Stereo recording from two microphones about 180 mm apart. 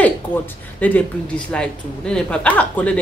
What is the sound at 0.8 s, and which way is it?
Speech, 10° left (ahead or behind).